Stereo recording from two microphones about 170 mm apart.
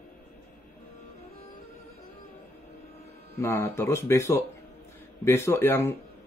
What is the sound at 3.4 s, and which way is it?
A man's voice, 15° left (ahead or behind).